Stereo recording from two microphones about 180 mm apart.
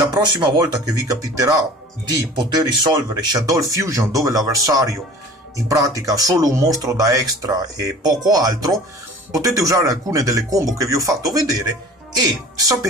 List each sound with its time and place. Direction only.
0.1 s speech: 25° right (ahead or behind)